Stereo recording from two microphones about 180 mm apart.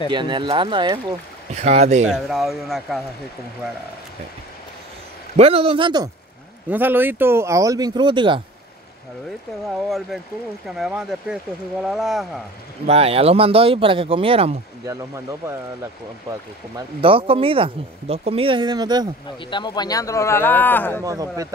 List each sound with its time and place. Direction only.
0.1 s speech: 25° right (ahead or behind)
1.5 s speech: 35° right (ahead or behind)
2.0 s speech: centre (ahead or behind)
5.3 s speech: 35° right (ahead or behind)
6.7 s speech: 10° right (ahead or behind); by 8.4 s 25° right (ahead or behind)
9.8 s speech: centre (ahead or behind)
12.8 s speech: 35° right (ahead or behind)
14.9 s speech: 15° right (ahead or behind)
16.7 s speech: 30° right (ahead or behind)
19.5 s speech: 25° left (ahead or behind)
21.0 s speech: 20° right (ahead or behind)